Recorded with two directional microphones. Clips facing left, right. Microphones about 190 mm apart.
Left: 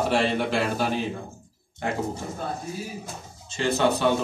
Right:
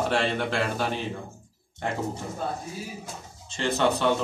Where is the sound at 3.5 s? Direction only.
10° left (ahead or behind).